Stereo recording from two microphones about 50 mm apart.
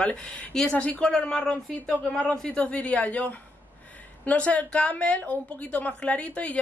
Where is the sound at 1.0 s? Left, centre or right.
Centre.